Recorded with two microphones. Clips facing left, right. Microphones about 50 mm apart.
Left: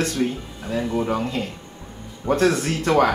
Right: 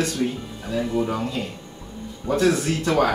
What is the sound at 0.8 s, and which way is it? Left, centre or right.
Speech, centre.